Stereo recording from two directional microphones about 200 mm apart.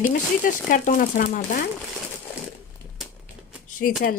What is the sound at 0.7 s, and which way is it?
Speech, 40° left (ahead or behind).